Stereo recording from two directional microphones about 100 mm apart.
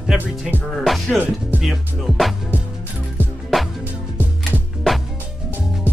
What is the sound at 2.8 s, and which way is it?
Music, 20° left (ahead or behind).